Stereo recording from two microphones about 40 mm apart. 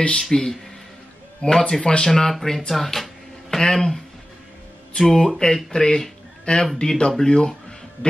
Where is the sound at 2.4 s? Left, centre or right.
Centre.